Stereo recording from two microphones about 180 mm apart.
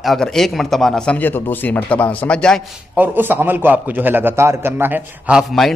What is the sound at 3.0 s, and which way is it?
A man's voice, 10° right (ahead or behind).